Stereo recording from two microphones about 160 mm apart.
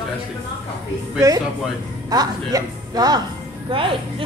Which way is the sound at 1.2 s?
20° right (ahead or behind).